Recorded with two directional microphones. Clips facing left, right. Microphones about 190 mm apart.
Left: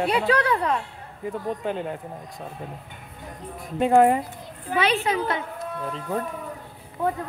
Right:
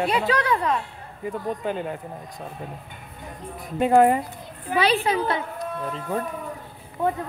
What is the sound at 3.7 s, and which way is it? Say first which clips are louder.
Speech: even; centre (ahead or behind).